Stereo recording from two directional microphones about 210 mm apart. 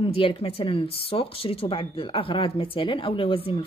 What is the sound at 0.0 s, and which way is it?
Speech, 25° left (ahead or behind).